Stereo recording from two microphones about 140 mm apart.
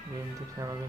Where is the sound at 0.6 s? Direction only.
25° right (ahead or behind).